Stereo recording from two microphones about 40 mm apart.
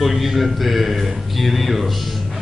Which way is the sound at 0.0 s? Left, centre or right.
Centre.